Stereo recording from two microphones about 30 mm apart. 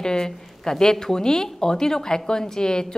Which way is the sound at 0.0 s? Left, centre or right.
Left.